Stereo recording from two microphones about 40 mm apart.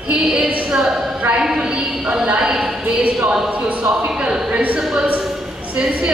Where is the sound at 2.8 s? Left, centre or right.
Right.